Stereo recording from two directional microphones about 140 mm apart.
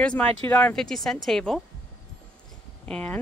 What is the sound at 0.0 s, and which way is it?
Speech, 10° left (ahead or behind).